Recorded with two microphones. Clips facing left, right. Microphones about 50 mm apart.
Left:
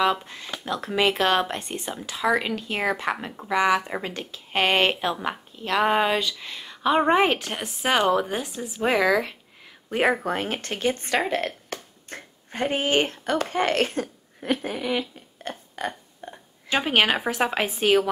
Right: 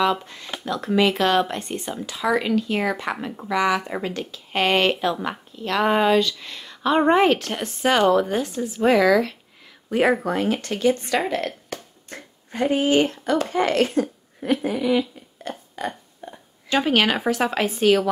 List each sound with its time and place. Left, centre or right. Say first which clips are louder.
0.0 s speech: right 1 dB; centre
9.8 s speech: right 3 dB; left
16.6 s speech: right 2 dB; centre